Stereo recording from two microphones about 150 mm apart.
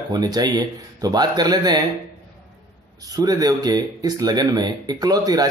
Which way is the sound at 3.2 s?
25° right (ahead or behind).